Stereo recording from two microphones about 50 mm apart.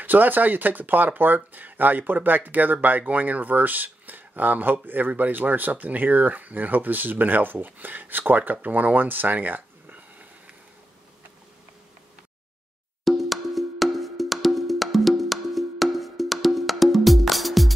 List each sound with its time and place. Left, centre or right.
0.0 s speech: right
13.0 s wood block: centre